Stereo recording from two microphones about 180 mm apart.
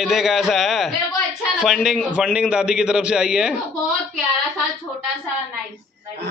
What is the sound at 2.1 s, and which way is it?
A man's voice, 5° right (ahead or behind).